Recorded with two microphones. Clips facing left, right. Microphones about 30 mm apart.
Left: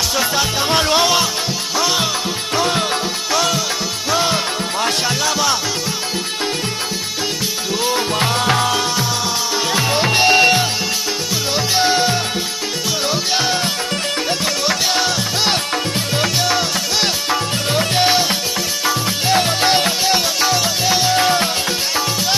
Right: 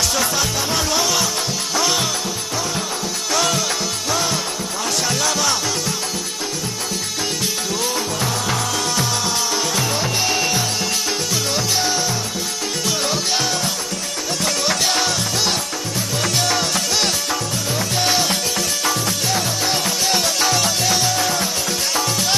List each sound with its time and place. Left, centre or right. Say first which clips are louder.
0.1 s music: left 2 dB; centre
0.7 s music: left 8 dB; left
1.8 s music: left 2 dB; centre
2.5 s music: left 8 dB; left
3.3 s music: left 1 dB; centre
4.1 s music: left 5 dB; left
8.2 s music: left 5 dB; left
11.5 s music: left 7 dB; left
13.1 s music: left 3 dB; left
16.2 s music: left 2 dB; centre
17.7 s music: left 5 dB; left
19.2 s music: left 9 dB; left
20.1 s music: left 2 dB; centre; by 21.5 s left